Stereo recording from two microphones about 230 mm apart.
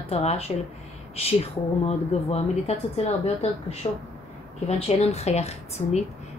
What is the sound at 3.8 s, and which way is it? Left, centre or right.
A woman's voice, left.